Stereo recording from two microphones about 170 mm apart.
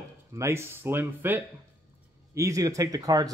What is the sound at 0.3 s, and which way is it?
Speech, 15° right (ahead or behind).